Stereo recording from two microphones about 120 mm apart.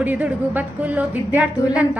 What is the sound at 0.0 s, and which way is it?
A woman's voice, 15° right (ahead or behind).